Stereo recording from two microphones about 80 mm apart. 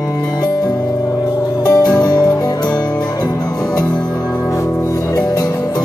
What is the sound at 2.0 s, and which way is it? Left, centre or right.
Music, left.